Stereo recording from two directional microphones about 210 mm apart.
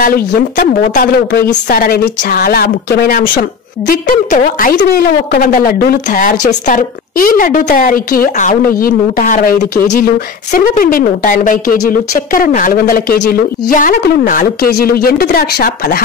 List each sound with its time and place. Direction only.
0.0 s speech: 40° left (ahead or behind)
14.4 s speech: 50° left (ahead or behind)